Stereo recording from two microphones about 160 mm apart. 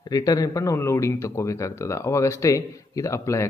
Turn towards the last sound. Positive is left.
turn(degrees=20)  # may be behind; listen again after turning